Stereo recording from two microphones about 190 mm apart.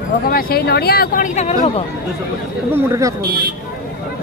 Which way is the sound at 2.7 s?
15° right (ahead or behind).